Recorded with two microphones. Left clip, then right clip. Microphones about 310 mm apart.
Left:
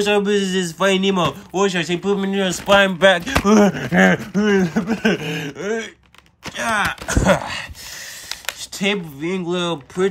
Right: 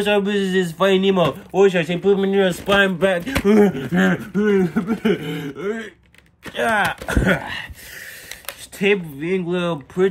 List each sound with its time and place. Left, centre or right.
0.0 s a man's voice: centre
6.5 s a man's voice: centre
7.2 s speech: centre
8.8 s a man's voice: centre